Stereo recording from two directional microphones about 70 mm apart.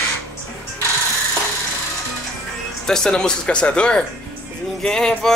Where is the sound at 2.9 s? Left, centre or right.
Centre.